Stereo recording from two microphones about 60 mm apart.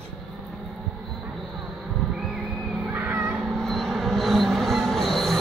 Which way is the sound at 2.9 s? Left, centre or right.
Right.